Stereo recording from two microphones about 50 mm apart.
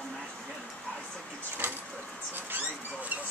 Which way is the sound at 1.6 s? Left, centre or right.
Right.